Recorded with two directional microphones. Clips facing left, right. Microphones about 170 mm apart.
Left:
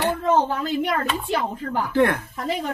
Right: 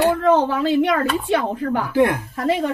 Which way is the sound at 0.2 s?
75° right (ahead or behind).